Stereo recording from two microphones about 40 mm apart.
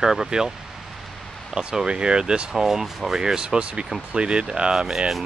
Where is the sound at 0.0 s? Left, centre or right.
Centre.